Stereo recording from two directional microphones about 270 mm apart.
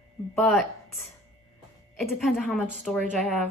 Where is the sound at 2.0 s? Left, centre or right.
Centre.